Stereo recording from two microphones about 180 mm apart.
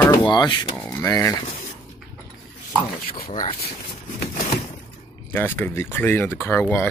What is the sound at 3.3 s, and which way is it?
Speech, 25° left (ahead or behind).